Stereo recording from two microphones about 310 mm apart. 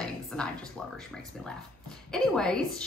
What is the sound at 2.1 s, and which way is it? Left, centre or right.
Speech, centre.